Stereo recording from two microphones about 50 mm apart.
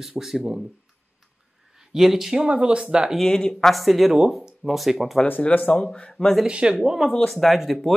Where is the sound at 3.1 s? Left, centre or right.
Centre.